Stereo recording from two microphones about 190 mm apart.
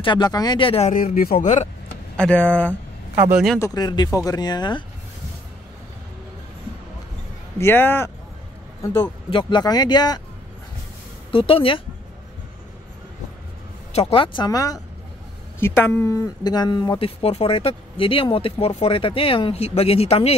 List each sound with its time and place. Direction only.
0.0 s speech: 25° left (ahead or behind)
0.9 s a man's voice: 50° left (ahead or behind)
1.3 s speech: 35° left (ahead or behind)
2.1 s speech: 5° left (ahead or behind)
3.2 s a man's voice: 10° right (ahead or behind)
3.5 s speech: 15° left (ahead or behind)
7.5 s speech: 10° left (ahead or behind)
9.3 s speech: 25° left (ahead or behind)
11.3 s speech: 30° left (ahead or behind)
13.9 s speech: 30° left (ahead or behind)